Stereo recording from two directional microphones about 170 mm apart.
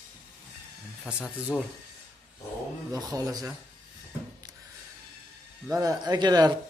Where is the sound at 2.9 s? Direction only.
20° right (ahead or behind).